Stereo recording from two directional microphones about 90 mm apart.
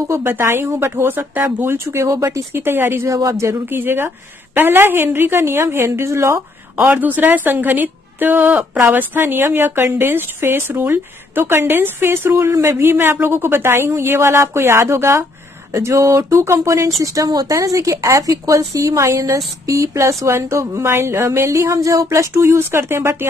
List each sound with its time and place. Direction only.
0.1 s speech: 25° right (ahead or behind)
3.1 s a woman's voice: 35° right (ahead or behind)
3.6 s speech: 25° right (ahead or behind)
7.0 s a woman's voice: 20° right (ahead or behind)